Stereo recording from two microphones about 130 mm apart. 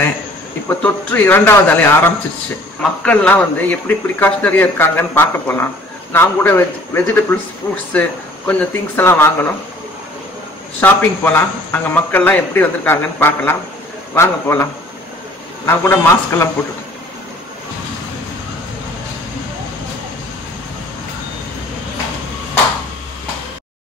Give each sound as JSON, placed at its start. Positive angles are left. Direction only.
{"t": 0.7, "sound": "speech", "side_deg": 15}
{"t": 10.8, "sound": "a man's voice", "side_deg": 15}